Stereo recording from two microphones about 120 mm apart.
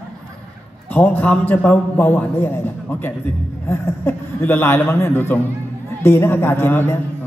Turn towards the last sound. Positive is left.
turn(degrees=20)  # may be behind; listen again after turning